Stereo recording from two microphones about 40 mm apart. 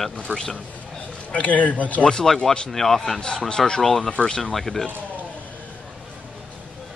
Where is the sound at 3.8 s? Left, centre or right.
Centre.